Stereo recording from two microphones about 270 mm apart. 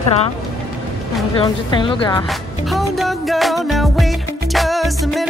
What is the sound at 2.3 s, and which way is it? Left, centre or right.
A woman's voice, centre.